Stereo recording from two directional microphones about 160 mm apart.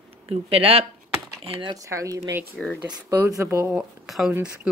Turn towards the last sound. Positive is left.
turn(degrees=0)  # may be behind; listen again after turning